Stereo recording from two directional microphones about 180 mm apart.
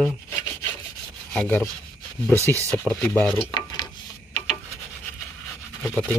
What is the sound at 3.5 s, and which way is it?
Dishes, 25° left (ahead or behind).